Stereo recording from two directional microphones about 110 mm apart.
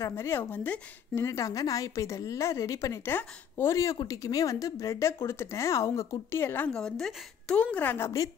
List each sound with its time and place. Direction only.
0.0 s a woman's voice: 25° left (ahead or behind)
6.7 s a woman's voice: 5° left (ahead or behind)